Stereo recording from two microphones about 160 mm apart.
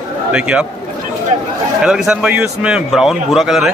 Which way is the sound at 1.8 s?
5° right (ahead or behind).